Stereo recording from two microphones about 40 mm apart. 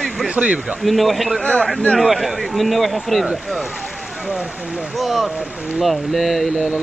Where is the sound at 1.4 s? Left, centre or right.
Left.